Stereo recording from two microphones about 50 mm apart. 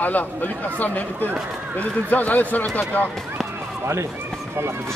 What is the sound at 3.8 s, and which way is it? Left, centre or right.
Speech, right.